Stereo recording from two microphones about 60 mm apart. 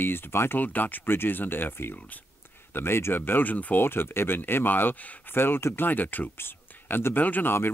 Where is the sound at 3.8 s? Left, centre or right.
Left.